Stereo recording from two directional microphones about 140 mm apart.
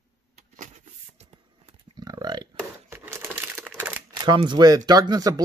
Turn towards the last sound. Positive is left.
turn(degrees=-25)  # may be behind; listen again after turning